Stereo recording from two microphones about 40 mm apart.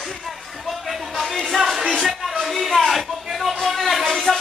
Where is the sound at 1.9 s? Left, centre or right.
Centre.